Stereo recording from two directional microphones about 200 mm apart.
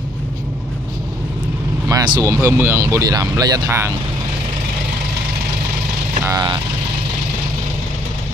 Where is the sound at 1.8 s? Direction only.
15° right (ahead or behind).